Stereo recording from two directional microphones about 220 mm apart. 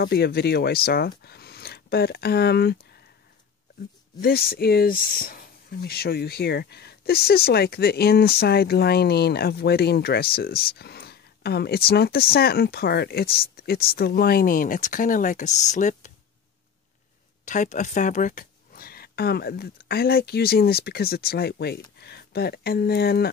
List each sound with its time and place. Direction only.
0.0 s speech: 45° left (ahead or behind)
4.2 s speech: 45° left (ahead or behind)
17.5 s speech: 35° left (ahead or behind)